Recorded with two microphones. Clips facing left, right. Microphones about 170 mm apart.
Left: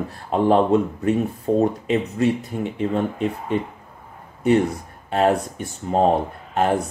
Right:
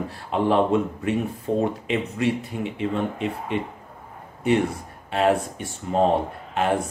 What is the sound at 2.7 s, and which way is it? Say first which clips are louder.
Speech: left 3 dB; 40° left (ahead or behind).